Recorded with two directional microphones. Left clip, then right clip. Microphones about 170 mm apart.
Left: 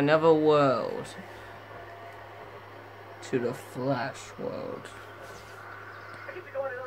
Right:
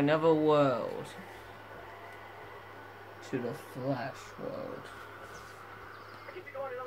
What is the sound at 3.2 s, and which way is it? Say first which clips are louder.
Speech: left 7 dB; 35° left (ahead or behind).